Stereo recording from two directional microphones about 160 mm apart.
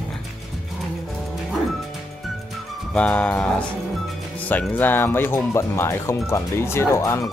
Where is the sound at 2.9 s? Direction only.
5° left (ahead or behind).